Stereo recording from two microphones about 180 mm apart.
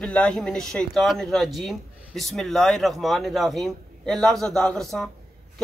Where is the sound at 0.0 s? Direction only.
5° left (ahead or behind).